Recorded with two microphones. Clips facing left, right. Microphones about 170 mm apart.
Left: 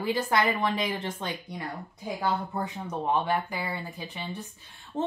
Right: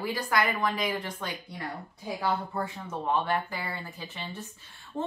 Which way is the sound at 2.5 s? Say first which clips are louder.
Left 1 dB; 20° left (ahead or behind).